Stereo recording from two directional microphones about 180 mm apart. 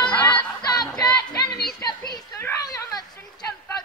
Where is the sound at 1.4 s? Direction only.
65° left (ahead or behind).